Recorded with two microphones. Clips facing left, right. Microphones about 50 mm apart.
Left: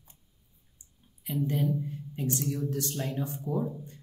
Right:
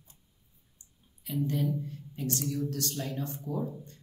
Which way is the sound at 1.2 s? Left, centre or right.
Centre.